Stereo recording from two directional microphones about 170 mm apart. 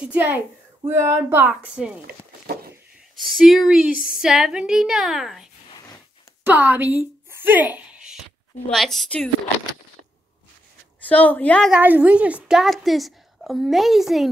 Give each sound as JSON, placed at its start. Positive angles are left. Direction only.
{"t": 0.0, "sound": "a woman's voice", "side_deg": -10}
{"t": 2.0, "sound": "a sound", "side_deg": -65}
{"t": 3.2, "sound": "a woman's voice", "side_deg": 0}
{"t": 11.1, "sound": "a woman's voice", "side_deg": 10}
{"t": 11.7, "sound": "a woman's voice", "side_deg": -10}